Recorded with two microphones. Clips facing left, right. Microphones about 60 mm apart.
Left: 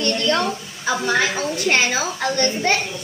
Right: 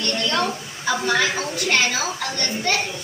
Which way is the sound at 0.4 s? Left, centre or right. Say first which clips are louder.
Left 1 dB; centre.